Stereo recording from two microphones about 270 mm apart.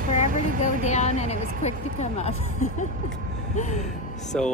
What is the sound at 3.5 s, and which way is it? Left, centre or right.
Music, left.